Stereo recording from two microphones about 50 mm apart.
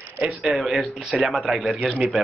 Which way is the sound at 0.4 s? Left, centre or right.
Centre.